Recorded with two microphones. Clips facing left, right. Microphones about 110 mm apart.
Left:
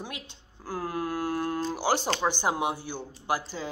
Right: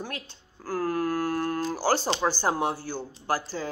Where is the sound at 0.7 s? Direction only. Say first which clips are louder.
Right 4 dB; 20° left (ahead or behind).